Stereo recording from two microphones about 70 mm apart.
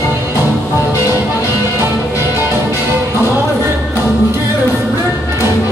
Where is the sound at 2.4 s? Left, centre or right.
Right.